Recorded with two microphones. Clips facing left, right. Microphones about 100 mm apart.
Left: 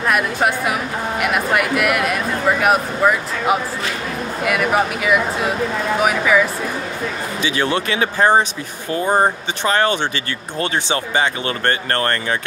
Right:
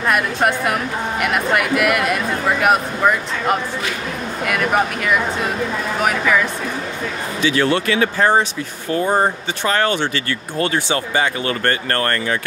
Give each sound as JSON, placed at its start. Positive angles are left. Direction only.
{"t": 0.1, "sound": "speech", "side_deg": 0}
{"t": 7.4, "sound": "speech", "side_deg": 20}